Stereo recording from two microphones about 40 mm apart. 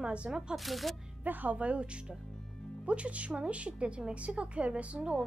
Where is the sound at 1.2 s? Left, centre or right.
Right.